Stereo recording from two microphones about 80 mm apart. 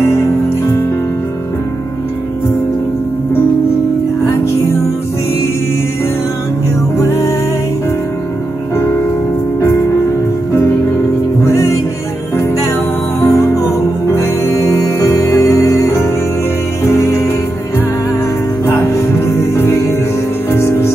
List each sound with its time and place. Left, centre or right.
8.7 s music: left
11.4 s music: left
13.2 s music: left
18.7 s music: left